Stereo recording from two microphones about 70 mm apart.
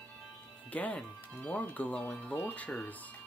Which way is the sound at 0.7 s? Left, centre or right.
Left.